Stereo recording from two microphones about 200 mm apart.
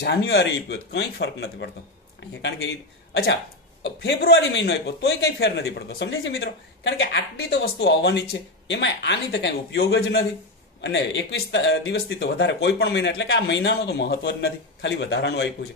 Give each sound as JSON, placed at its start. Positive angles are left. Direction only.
{"t": 0.0, "sound": "a man's voice", "side_deg": 55}